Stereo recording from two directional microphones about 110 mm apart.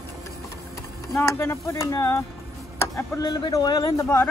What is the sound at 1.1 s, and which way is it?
Speech, 25° left (ahead or behind).